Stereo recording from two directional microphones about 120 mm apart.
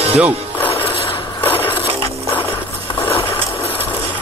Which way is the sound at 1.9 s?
55° right (ahead or behind).